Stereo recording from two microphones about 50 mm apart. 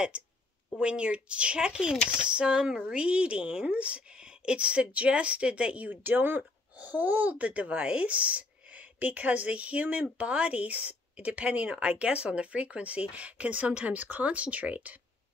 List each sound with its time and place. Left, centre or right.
0.1 s a woman's voice: right